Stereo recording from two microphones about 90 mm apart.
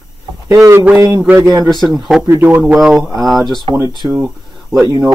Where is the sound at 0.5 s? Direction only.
35° right (ahead or behind).